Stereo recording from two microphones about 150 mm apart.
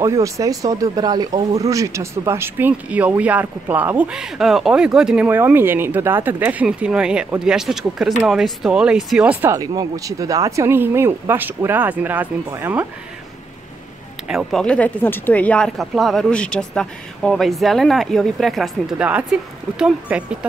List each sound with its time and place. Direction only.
0.0 s speech: 20° right (ahead or behind)
9.6 s speech: 25° right (ahead or behind)
14.2 s speech: centre (ahead or behind)